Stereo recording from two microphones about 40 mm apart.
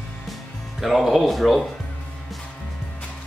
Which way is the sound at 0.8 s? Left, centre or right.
Centre.